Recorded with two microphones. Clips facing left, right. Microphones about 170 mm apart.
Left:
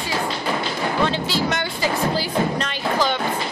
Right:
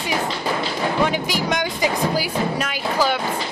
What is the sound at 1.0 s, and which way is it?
Speech, 15° right (ahead or behind).